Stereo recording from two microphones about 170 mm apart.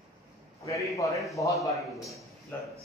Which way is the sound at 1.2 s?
Centre (ahead or behind).